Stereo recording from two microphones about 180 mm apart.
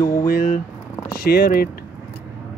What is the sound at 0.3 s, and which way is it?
Speech, 55° left (ahead or behind).